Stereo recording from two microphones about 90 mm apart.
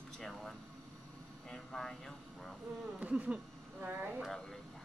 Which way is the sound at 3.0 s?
15° right (ahead or behind).